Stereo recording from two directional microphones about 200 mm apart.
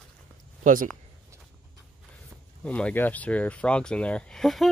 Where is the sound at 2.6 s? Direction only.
5° left (ahead or behind).